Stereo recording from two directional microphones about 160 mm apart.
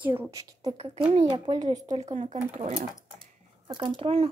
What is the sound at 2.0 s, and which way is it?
Speech, 45° right (ahead or behind).